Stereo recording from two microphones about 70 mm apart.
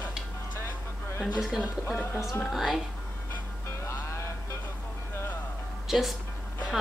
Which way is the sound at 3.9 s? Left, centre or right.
Left.